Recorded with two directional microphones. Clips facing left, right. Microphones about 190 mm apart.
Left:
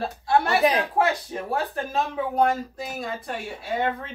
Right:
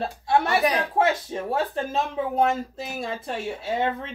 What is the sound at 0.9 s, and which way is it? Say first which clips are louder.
Speech: right 1 dB; 20° right (ahead or behind).